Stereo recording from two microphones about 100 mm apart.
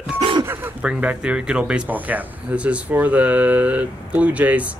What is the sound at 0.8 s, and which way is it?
Speech, 10° right (ahead or behind).